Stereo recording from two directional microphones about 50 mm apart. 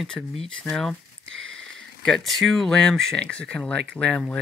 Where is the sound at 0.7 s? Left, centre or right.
Left.